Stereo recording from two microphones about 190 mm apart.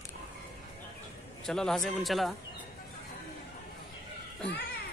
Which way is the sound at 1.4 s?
Centre (ahead or behind).